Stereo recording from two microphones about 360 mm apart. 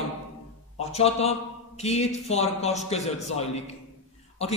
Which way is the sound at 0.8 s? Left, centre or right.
Centre.